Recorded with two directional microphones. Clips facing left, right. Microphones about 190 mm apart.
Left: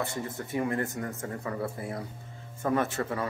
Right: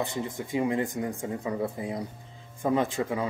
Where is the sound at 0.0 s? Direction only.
15° right (ahead or behind).